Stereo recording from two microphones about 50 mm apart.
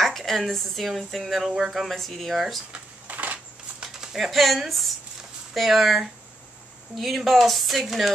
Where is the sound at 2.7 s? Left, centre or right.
Right.